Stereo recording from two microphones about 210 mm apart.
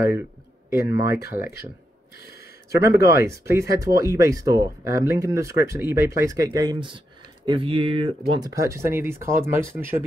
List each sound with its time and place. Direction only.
0.7 s speech: 15° right (ahead or behind)
2.3 s a sound: 15° right (ahead or behind)
3.2 s speech: 15° right (ahead or behind)